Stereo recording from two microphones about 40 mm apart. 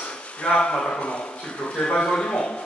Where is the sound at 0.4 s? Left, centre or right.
Left.